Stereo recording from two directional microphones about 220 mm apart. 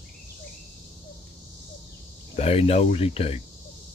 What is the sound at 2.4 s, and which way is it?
Speech, 25° left (ahead or behind).